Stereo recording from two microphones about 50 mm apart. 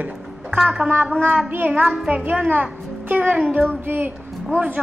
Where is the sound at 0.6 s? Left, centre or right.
Centre.